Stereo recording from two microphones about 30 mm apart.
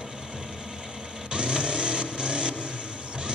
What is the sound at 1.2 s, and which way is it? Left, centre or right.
Vehicle, right.